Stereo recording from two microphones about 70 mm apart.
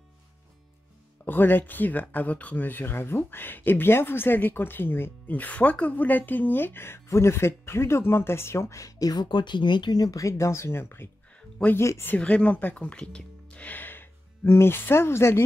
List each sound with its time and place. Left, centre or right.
1.2 s speech: left
12.2 s speech: centre; by 15.4 s left